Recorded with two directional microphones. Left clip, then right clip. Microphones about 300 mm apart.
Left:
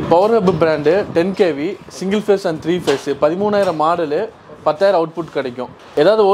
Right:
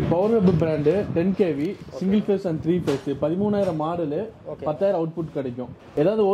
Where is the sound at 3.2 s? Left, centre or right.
Centre.